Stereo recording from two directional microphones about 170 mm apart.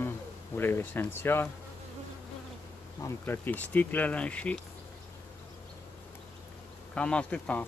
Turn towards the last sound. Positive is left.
turn(degrees=10)  # may be behind; listen again after turning